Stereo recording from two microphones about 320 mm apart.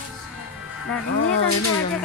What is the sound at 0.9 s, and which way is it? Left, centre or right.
Speech, left.